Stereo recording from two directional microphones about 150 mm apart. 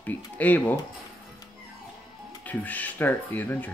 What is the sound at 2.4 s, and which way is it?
Speech, 10° left (ahead or behind).